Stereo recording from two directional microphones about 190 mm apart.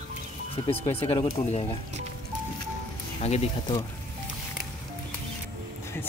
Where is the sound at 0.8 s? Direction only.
30° left (ahead or behind).